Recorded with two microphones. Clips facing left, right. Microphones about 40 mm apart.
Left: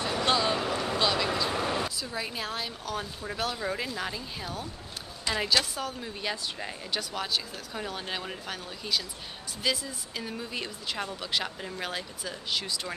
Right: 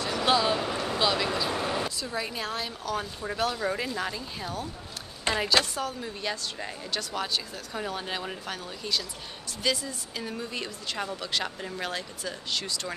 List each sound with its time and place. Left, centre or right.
0.2 s a sound: centre
0.8 s a woman's voice: centre
5.3 s a woman's voice: right
5.6 s a woman's voice: centre